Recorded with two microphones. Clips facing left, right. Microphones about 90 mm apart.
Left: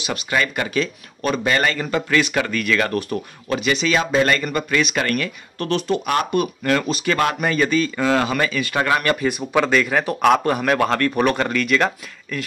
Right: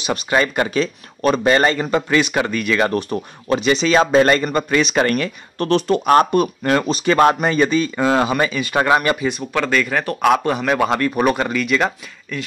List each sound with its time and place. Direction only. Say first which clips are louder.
0.0 s speech: right 4 dB; 30° right (ahead or behind)
9.3 s speech: left 1 dB; 10° left (ahead or behind)
10.9 s speech: right 1 dB; 15° right (ahead or behind)